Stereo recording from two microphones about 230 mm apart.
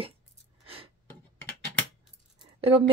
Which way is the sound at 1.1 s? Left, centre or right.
Centre.